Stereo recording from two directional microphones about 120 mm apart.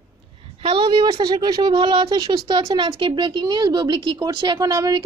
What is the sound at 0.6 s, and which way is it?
Speech, 40° right (ahead or behind).